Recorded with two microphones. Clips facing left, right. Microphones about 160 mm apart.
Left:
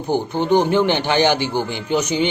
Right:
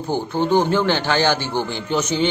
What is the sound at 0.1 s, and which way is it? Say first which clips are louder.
A man's voice: left 1 dB; 15° left (ahead or behind).